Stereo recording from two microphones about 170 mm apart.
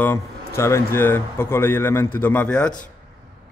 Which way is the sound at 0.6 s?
15° left (ahead or behind).